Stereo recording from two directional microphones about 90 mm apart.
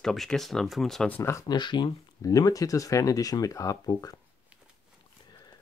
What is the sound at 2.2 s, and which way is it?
Speech, 40° left (ahead or behind).